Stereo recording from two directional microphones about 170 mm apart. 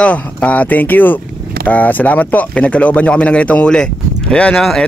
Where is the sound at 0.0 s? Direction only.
10° left (ahead or behind).